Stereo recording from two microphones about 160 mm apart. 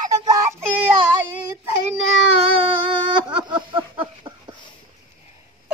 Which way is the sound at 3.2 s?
30° right (ahead or behind).